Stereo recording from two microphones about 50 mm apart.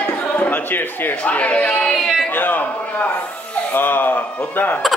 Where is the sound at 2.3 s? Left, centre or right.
Left.